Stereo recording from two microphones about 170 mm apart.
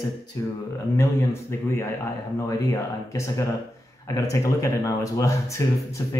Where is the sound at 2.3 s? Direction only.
20° left (ahead or behind).